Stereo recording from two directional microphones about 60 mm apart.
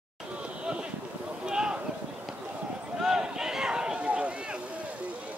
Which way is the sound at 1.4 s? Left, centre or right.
Centre.